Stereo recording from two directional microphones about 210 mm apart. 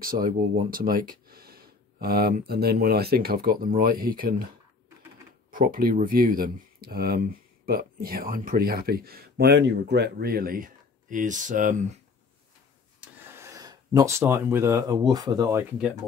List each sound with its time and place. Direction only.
0.0 s speech: 45° right (ahead or behind)
5.5 s speech: 40° right (ahead or behind)
13.2 s speech: 15° right (ahead or behind)